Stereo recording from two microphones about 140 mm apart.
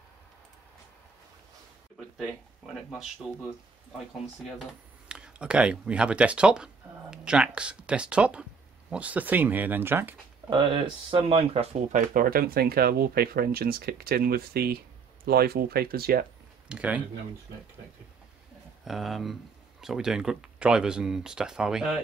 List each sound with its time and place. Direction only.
2.1 s speech: centre (ahead or behind)
4.6 s speech: 5° right (ahead or behind)
10.5 s speech: 40° right (ahead or behind); by 16.3 s 90° right
16.6 s speech: 10° right (ahead or behind)
18.9 s speech: centre (ahead or behind)